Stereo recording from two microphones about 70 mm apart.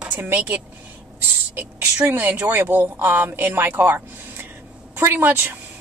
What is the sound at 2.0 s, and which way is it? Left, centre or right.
A woman's voice, right.